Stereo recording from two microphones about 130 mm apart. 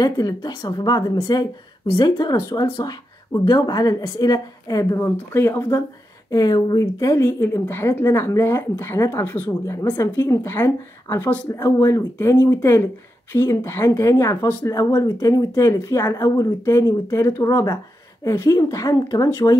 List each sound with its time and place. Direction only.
0.0 s speech: 30° left (ahead or behind)
6.3 s a woman's voice: 30° left (ahead or behind)